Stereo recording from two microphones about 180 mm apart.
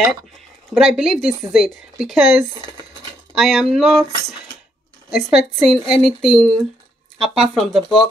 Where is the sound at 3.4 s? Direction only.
Centre (ahead or behind).